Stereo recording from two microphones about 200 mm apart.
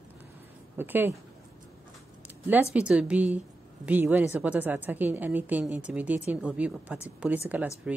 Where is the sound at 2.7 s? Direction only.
5° right (ahead or behind).